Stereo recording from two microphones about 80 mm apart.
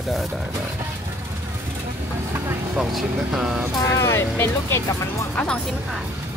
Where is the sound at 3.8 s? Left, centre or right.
Left.